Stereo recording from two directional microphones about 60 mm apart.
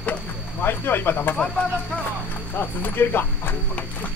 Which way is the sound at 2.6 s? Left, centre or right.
Left.